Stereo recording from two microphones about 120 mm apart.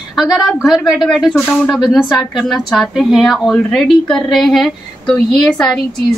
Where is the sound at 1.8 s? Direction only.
5° right (ahead or behind).